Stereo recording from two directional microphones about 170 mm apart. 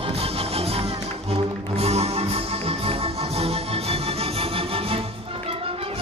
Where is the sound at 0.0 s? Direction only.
35° right (ahead or behind).